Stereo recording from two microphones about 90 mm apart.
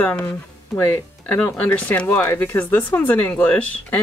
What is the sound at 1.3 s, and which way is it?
Speech, 20° left (ahead or behind).